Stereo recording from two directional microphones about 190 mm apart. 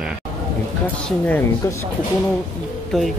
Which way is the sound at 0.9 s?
5° left (ahead or behind).